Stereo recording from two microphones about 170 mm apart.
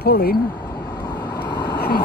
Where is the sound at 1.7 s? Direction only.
65° left (ahead or behind).